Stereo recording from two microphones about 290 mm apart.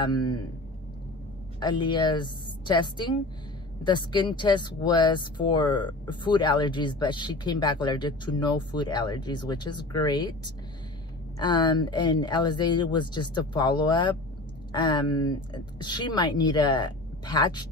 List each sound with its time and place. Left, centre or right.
0.0 s speech: centre
1.6 s a woman's voice: centre